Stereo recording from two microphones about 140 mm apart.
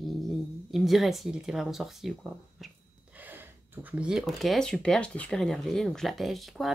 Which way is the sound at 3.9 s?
5° right (ahead or behind).